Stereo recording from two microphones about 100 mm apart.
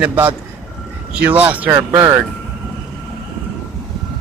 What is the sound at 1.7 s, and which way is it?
Speech, 25° right (ahead or behind).